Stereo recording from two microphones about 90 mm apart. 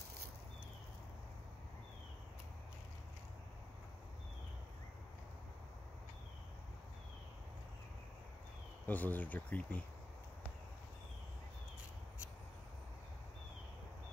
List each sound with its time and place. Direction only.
8.8 s speech: 20° left (ahead or behind)